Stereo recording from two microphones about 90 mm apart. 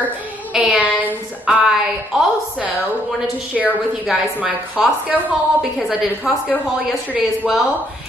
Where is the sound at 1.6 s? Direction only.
5° right (ahead or behind).